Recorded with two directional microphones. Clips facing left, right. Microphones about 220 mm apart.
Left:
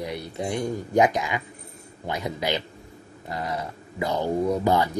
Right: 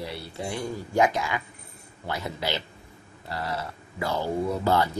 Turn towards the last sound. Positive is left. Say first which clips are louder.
# left 2 dB
turn(degrees=15)  # may be behind; listen again after turning